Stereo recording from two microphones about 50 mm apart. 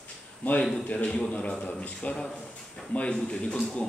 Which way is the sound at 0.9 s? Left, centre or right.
Centre.